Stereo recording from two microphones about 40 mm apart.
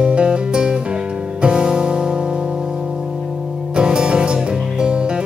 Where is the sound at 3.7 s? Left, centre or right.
Right.